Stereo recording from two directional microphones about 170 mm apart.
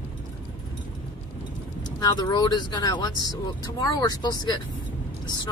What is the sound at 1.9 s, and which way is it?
Speech, 25° left (ahead or behind).